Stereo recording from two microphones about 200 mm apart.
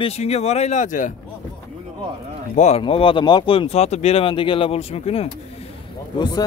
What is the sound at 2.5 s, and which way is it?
Speech, 35° left (ahead or behind).